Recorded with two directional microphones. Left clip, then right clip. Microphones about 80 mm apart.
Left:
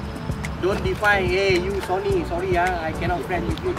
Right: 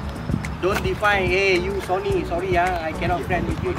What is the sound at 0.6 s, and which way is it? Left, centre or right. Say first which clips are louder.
Speech: even; centre.